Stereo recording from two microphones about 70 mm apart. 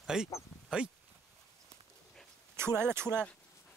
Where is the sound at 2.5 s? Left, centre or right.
Right.